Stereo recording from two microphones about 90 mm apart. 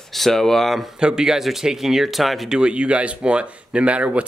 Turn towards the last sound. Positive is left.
turn(degrees=-15)  # may be behind; listen again after turning